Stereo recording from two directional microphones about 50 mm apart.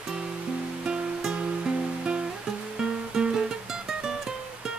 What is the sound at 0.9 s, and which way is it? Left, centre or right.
Music, centre.